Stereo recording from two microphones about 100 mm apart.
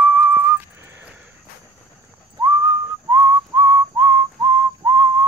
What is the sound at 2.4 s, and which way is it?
Whistling, 40° right (ahead or behind).